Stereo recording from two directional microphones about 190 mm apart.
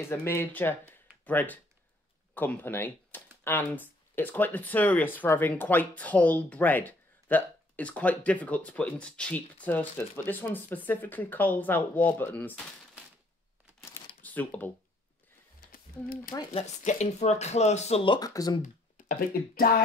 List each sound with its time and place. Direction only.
0.1 s speech: 15° left (ahead or behind)
14.2 s speech: 10° left (ahead or behind)
16.5 s speech: 35° left (ahead or behind); by 18.6 s 20° left (ahead or behind)
18.6 s speech: 45° left (ahead or behind)